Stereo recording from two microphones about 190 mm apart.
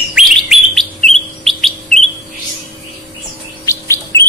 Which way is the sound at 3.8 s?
15° left (ahead or behind).